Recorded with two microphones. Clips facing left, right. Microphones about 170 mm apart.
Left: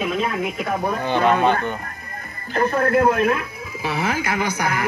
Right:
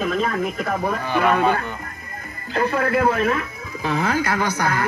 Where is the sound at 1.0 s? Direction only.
25° left (ahead or behind).